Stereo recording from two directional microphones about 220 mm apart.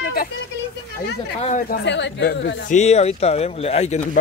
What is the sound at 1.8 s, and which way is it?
Speech, 55° left (ahead or behind).